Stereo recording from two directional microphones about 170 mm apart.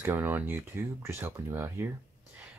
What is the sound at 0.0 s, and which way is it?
Speech, 10° right (ahead or behind).